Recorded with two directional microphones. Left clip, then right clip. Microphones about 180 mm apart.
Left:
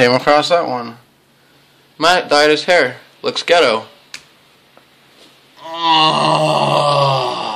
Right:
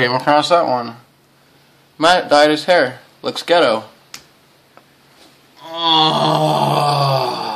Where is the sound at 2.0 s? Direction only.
5° right (ahead or behind).